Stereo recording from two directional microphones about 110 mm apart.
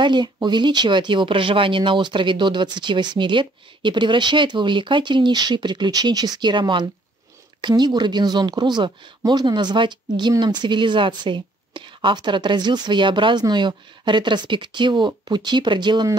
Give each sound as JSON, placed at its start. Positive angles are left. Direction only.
{"t": 0.0, "sound": "speech", "side_deg": -45}